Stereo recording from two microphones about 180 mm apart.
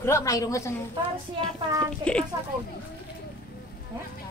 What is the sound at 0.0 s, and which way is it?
Speech, 15° left (ahead or behind).